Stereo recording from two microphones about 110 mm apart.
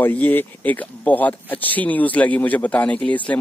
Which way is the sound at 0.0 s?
15° left (ahead or behind).